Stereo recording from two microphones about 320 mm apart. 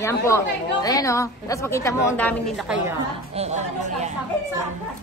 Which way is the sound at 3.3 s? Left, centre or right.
Right.